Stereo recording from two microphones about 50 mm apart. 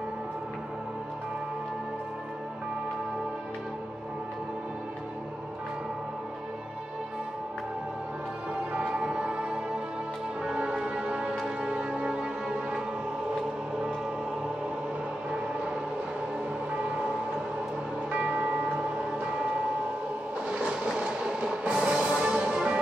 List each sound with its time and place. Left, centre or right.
8.7 s music: centre
18.1 s music: right
19.1 s a sound: centre
20.4 s music: right